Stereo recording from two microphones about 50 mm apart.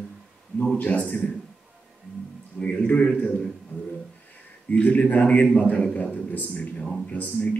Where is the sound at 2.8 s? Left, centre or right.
Left.